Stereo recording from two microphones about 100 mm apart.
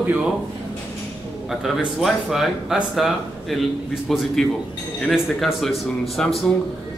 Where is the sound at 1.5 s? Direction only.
Centre (ahead or behind).